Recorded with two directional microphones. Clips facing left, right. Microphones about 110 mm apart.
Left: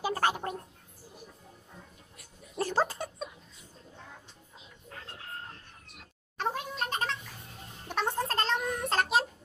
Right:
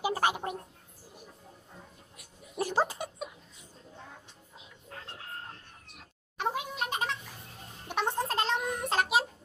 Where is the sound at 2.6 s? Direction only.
15° right (ahead or behind).